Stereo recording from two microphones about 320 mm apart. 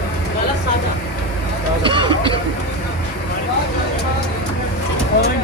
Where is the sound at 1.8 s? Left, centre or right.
Centre.